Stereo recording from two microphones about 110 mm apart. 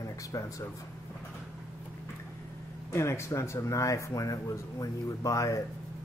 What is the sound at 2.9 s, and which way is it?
Speech, 25° left (ahead or behind).